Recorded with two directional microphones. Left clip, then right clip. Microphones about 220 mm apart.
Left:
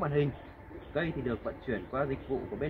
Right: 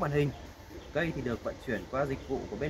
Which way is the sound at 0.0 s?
15° right (ahead or behind).